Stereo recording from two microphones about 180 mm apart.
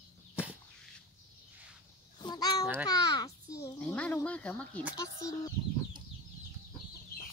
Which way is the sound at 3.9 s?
5° left (ahead or behind).